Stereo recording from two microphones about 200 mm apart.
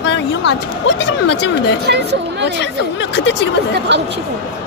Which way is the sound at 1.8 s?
55° right (ahead or behind).